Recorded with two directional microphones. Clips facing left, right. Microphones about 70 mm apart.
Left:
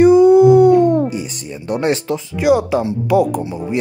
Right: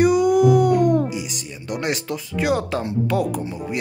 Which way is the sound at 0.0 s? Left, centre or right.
Left.